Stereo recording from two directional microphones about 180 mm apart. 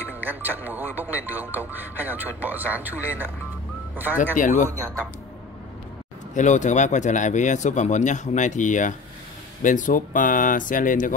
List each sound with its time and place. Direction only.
0.1 s speech: 10° right (ahead or behind)
4.2 s speech: 45° left (ahead or behind)
6.3 s speech: 40° left (ahead or behind)